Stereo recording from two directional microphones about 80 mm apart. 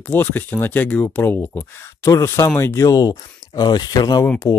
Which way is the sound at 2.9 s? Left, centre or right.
Left.